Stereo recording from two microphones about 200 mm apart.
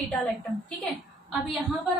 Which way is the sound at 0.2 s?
5° left (ahead or behind).